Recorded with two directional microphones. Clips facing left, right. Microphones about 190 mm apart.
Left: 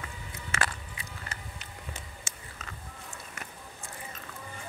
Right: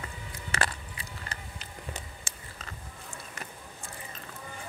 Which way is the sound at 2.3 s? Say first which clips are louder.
Right 1 dB; 30° right (ahead or behind).